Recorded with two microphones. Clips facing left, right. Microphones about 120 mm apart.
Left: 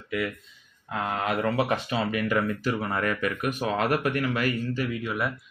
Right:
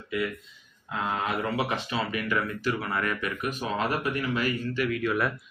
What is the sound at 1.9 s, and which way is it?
Speech, 45° left (ahead or behind).